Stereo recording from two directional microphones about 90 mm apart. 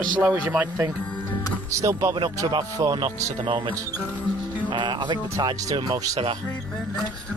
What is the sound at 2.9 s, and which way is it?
Speech, 70° right (ahead or behind).